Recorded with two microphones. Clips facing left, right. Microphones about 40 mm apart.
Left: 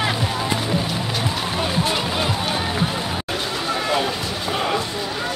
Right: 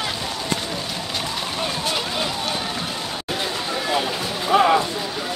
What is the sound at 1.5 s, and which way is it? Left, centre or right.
Music, centre.